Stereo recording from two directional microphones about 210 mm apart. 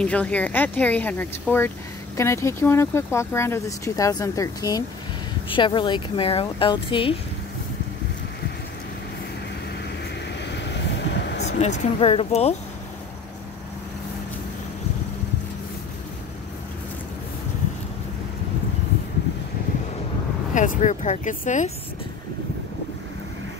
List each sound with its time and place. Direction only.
0.0 s speech: 5° left (ahead or behind); by 7.2 s 25° left (ahead or behind)
10.4 s vehicle: 55° left (ahead or behind)
11.4 s speech: 35° left (ahead or behind)
20.5 s speech: 35° left (ahead or behind)